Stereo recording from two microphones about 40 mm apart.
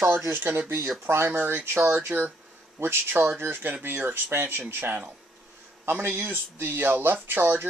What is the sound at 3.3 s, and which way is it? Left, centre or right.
Speech, right.